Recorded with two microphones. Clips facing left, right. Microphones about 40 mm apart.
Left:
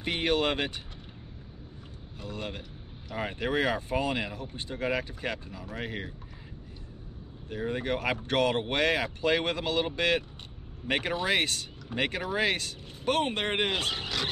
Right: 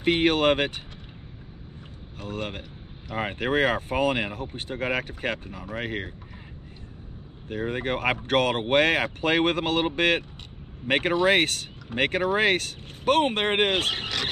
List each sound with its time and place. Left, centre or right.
0.0 s speech: right
2.1 s speech: right
7.4 s speech: right